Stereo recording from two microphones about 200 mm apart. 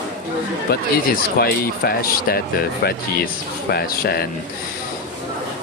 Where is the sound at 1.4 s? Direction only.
50° left (ahead or behind).